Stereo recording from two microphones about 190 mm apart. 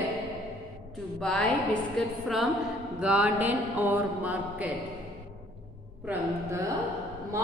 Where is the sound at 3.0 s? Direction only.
5° right (ahead or behind).